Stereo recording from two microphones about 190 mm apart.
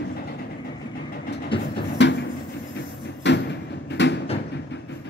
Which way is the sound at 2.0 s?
65° left (ahead or behind).